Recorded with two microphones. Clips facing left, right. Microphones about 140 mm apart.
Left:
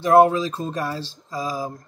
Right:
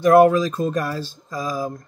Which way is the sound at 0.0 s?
25° left (ahead or behind).